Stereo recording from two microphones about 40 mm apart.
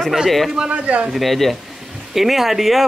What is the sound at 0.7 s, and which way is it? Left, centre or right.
Speech, right.